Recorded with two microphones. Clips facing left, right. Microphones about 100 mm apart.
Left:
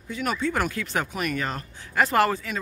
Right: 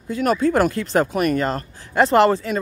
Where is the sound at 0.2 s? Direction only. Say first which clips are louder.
Right 8 dB; 40° right (ahead or behind).